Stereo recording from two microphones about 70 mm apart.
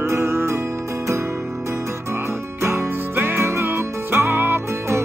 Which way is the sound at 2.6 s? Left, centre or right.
Right.